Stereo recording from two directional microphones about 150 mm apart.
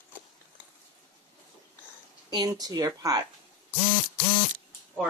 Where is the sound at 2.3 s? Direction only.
25° right (ahead or behind).